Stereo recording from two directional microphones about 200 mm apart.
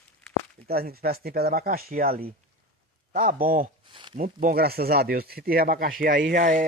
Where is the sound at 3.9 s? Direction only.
25° right (ahead or behind).